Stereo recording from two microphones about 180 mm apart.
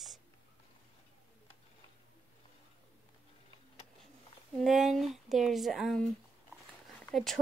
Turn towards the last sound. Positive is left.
turn(degrees=0)  # may be behind; listen again after turning